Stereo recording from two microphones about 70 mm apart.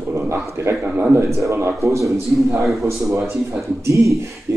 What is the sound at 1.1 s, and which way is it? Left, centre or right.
Speech, right.